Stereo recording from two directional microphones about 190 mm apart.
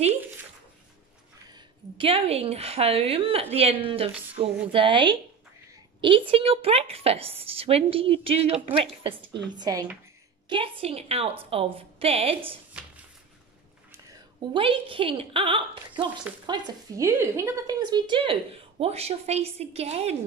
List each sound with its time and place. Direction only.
1.5 s a woman's voice: 30° right (ahead or behind)
13.9 s a sound: 15° right (ahead or behind)
14.6 s a woman's voice: 25° right (ahead or behind)